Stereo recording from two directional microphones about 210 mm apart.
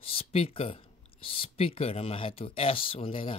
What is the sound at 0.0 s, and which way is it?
Speech, 25° left (ahead or behind).